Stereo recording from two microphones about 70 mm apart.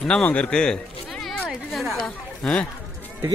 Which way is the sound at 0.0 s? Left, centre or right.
Centre.